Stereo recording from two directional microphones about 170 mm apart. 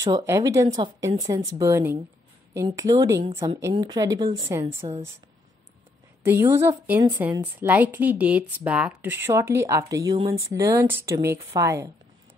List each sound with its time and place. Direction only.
0.0 s a woman's voice: 20° right (ahead or behind)
6.2 s speech: 15° right (ahead or behind)